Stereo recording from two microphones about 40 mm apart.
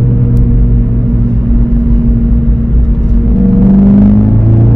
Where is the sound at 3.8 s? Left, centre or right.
Centre.